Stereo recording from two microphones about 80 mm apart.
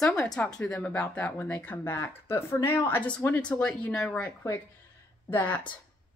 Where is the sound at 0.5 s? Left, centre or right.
Centre.